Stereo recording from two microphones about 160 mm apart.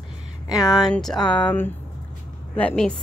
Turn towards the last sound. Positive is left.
turn(degrees=5)  # may be behind; listen again after turning